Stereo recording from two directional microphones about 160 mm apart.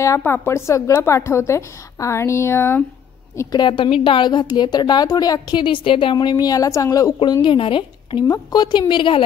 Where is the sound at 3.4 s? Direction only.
25° left (ahead or behind).